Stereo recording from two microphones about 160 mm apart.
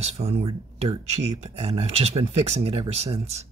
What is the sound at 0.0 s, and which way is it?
Speech, 40° right (ahead or behind).